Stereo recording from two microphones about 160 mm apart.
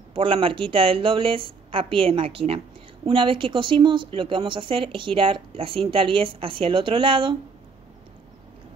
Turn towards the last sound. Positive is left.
turn(degrees=-30)  # may be behind; listen again after turning